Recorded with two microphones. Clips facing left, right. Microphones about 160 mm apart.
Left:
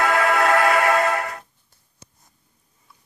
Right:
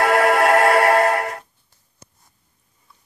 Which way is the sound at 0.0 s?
60° right (ahead or behind).